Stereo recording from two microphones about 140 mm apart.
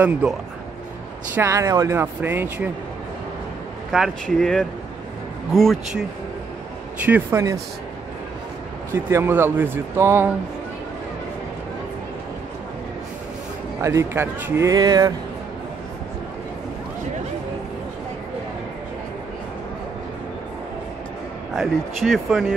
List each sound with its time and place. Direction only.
1.3 s speech: 20° right (ahead or behind)
3.9 s speech: centre (ahead or behind)
7.1 s speech: 15° right (ahead or behind)
8.9 s speech: 15° right (ahead or behind)
13.7 s speech: 20° right (ahead or behind)
21.5 s speech: centre (ahead or behind)